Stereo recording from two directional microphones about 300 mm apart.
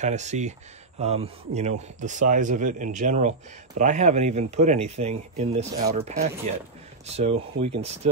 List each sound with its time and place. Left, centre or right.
0.0 s a man's voice: right